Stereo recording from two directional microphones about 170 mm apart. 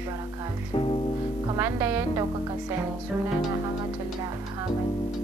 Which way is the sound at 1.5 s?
15° right (ahead or behind).